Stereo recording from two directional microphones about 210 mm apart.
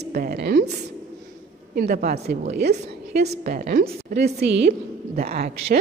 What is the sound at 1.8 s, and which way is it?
A woman's voice, 45° right (ahead or behind).